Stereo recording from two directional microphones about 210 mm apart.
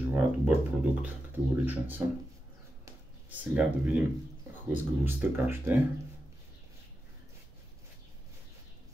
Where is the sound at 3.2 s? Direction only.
5° right (ahead or behind).